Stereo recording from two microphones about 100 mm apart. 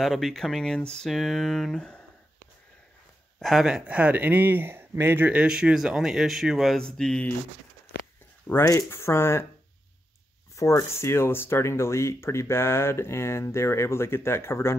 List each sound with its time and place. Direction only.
0.0 s speech: centre (ahead or behind)
3.3 s speech: centre (ahead or behind)
6.8 s speech: 5° left (ahead or behind)
8.6 s speech: 30° left (ahead or behind)
10.5 s speech: 30° left (ahead or behind)